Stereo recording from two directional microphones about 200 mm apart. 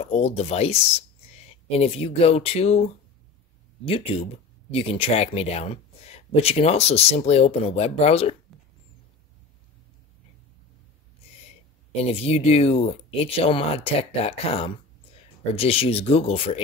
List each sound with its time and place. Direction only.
0.0 s speech: 30° left (ahead or behind)
11.9 s speech: 30° left (ahead or behind)